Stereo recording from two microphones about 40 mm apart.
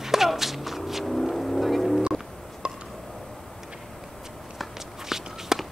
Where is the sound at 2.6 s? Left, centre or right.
Right.